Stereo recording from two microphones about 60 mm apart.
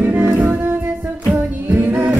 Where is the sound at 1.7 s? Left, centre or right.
Right.